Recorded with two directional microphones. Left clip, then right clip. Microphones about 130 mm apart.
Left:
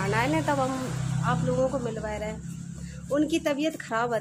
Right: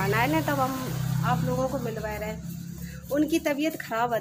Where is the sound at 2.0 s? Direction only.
5° left (ahead or behind).